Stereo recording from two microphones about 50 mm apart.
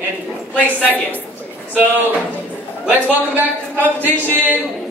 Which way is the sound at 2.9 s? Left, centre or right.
Right.